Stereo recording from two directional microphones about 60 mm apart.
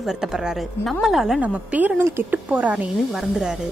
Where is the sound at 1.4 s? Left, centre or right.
Right.